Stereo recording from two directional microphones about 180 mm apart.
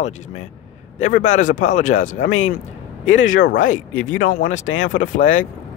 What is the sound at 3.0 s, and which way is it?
Speech, 90° left.